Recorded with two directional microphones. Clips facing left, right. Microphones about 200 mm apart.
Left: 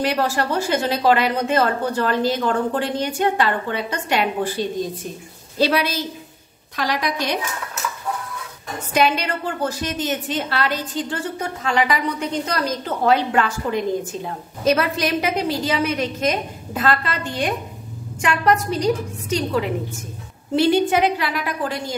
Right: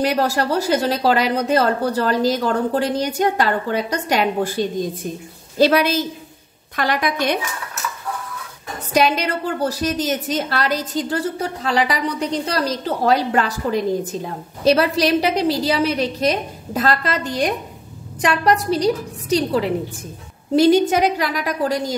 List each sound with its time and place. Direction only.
0.0 s a woman's voice: 40° right (ahead or behind)
5.6 s a woman's voice: 45° right (ahead or behind)
8.9 s a woman's voice: 40° right (ahead or behind)